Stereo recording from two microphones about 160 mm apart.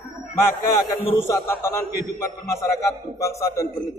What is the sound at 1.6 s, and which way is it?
A man's voice, 15° left (ahead or behind).